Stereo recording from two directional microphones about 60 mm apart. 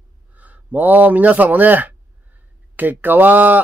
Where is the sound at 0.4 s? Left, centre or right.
Right.